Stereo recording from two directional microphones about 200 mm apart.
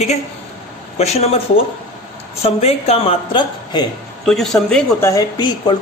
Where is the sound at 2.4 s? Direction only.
30° left (ahead or behind).